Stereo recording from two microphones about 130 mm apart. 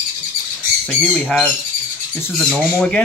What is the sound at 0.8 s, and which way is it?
Speech, 5° left (ahead or behind).